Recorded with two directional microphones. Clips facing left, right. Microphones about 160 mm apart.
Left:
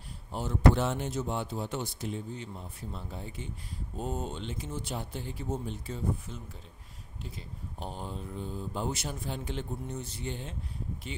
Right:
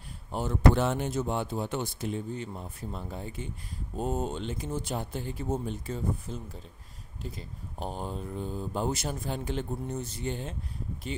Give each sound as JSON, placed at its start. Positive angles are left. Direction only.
{"t": 0.3, "sound": "speech", "side_deg": -55}